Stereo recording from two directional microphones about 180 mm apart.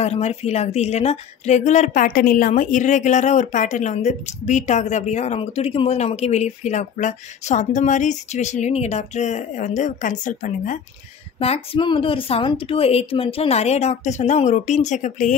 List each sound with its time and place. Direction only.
0.0 s a woman's voice: 35° left (ahead or behind)
11.3 s a woman's voice: 35° left (ahead or behind)